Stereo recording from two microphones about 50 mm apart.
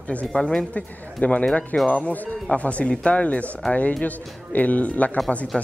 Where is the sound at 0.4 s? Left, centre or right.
Centre.